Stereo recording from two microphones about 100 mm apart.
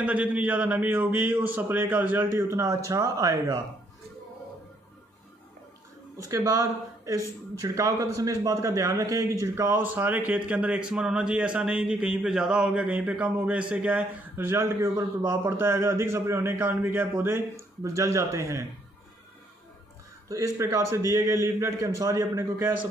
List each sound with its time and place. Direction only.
0.0 s speech: 15° right (ahead or behind)
2.3 s speech: 30° right (ahead or behind)
7.6 s a man's voice: 35° right (ahead or behind)
20.2 s a man's voice: 35° right (ahead or behind)